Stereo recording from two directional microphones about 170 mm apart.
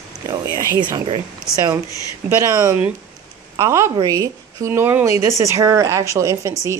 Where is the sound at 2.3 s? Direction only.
15° right (ahead or behind).